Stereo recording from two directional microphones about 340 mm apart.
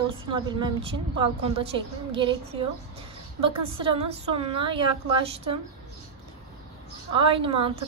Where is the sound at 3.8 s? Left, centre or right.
Centre.